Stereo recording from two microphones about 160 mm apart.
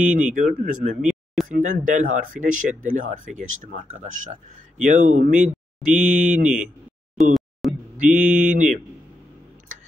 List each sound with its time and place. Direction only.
0.1 s speech: 55° right (ahead or behind)
1.0 s a sound: centre (ahead or behind)
1.5 s speech: 50° right (ahead or behind)
5.9 s speech: 5° right (ahead or behind)
6.4 s speech: 50° right (ahead or behind)
7.2 s speech: centre (ahead or behind)
7.6 s a sound: centre (ahead or behind)
8.0 s speech: 55° right (ahead or behind)